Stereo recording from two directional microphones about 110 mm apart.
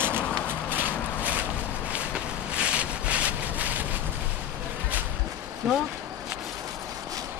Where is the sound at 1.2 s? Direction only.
15° right (ahead or behind).